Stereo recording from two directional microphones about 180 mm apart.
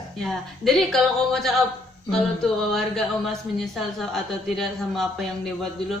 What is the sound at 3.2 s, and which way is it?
A woman's voice, centre (ahead or behind).